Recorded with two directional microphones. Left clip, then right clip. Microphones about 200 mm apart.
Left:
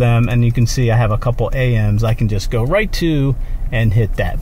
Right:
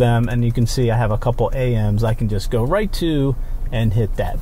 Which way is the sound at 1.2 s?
5° left (ahead or behind).